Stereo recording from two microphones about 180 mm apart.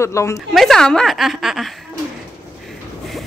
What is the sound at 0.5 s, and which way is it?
A woman's voice, centre (ahead or behind).